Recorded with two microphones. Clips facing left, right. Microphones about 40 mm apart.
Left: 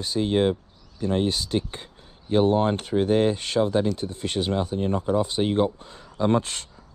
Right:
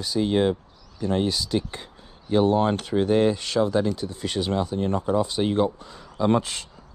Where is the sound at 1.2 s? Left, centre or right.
Left.